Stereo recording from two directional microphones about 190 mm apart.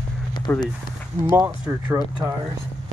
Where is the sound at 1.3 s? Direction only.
10° right (ahead or behind).